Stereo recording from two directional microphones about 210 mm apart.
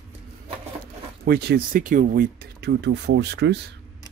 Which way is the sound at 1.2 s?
50° right (ahead or behind).